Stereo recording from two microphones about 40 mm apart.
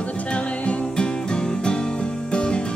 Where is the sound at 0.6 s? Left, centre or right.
Left.